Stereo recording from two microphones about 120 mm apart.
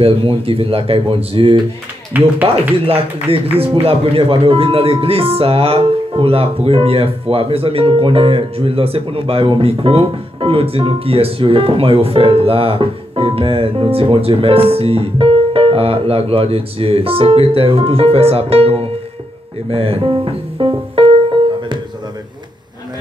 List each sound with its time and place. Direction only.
0.0 s speech: 50° right (ahead or behind)